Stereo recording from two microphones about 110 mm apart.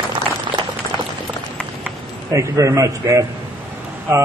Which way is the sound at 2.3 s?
30° right (ahead or behind).